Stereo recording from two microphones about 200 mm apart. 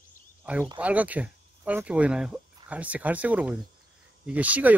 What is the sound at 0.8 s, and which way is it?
Speech, 5° right (ahead or behind).